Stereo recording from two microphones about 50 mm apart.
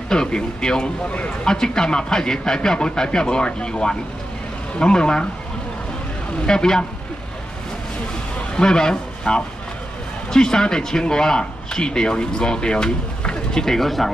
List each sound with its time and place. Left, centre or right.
0.1 s speech: centre
1.0 s speech: left
1.5 s speech: centre
6.4 s speech: centre
8.5 s speech: centre